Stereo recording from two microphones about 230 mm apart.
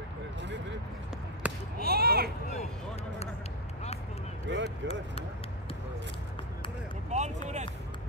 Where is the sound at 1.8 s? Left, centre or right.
Right.